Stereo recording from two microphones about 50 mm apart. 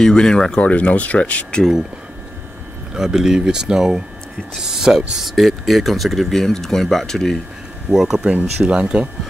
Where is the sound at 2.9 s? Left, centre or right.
Centre.